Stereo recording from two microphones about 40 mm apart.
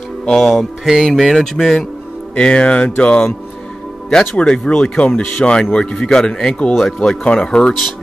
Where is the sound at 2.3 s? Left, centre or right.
Left.